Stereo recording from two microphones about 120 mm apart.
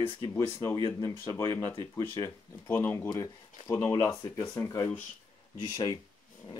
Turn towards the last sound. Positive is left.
turn(degrees=30)  # may be behind; listen again after turning